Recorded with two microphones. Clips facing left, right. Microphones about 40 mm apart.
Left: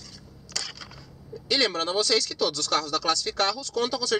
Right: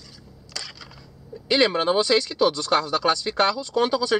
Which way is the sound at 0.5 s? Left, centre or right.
Centre.